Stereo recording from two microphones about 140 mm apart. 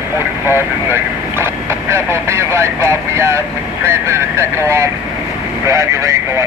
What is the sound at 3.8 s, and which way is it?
Speech, 20° right (ahead or behind).